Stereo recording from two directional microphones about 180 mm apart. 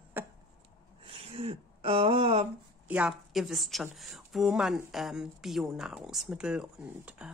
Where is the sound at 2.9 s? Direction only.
5° right (ahead or behind).